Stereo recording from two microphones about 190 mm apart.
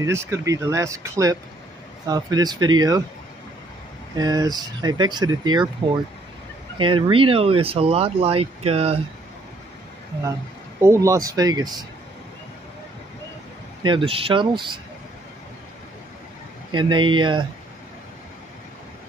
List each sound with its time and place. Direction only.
0.0 s speech: 15° right (ahead or behind)
4.2 s speech: 20° right (ahead or behind)
10.8 s speech: 15° right (ahead or behind)
13.8 s speech: 25° right (ahead or behind)
16.7 s speech: 25° right (ahead or behind)